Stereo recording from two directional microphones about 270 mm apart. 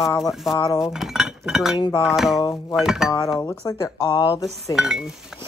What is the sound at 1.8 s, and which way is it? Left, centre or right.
Speech, centre.